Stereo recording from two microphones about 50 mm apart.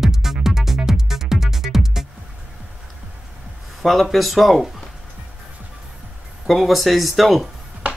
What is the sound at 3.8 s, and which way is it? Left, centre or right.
Speech, centre.